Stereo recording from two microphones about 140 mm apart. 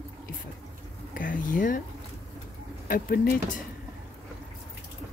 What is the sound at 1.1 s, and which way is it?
Speech, 75° left (ahead or behind).